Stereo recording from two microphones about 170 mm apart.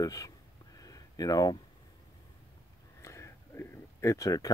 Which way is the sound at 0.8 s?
20° left (ahead or behind).